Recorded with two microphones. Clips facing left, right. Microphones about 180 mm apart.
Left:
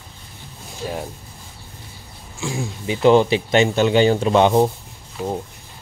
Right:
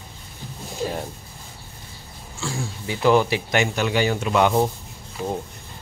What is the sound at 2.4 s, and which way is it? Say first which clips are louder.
Speech: left 4 dB; 20° left (ahead or behind).